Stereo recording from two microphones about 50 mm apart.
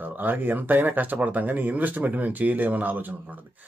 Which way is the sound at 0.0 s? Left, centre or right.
Right.